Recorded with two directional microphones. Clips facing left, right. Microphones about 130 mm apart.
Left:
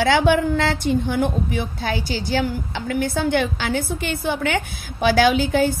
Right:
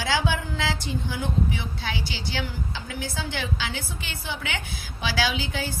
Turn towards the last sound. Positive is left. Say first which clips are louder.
# left 11 dB
turn(degrees=50)  # may be behind; listen again after turning